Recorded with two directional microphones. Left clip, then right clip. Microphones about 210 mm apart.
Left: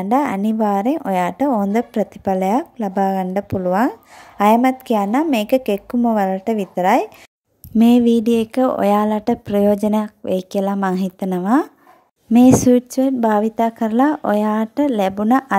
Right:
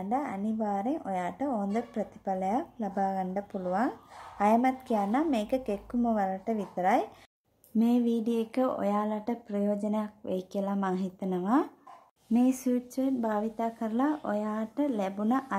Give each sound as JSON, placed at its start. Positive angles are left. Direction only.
{"t": 0.0, "sound": "a woman's voice", "side_deg": 40}